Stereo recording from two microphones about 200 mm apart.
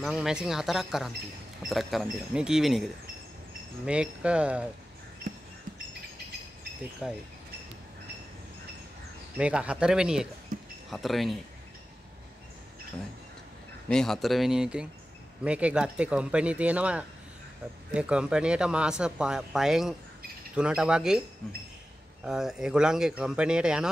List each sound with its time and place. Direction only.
0.0 s speech: centre (ahead or behind)
7.0 s speech: 5° right (ahead or behind)
9.4 s speech: 5° right (ahead or behind)
10.5 s a sound: 40° right (ahead or behind)
10.9 s speech: centre (ahead or behind)
13.8 s speech: 5° left (ahead or behind)
22.2 s speech: 5° right (ahead or behind)